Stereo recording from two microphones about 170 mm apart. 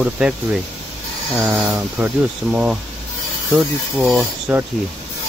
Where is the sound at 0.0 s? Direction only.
5° right (ahead or behind).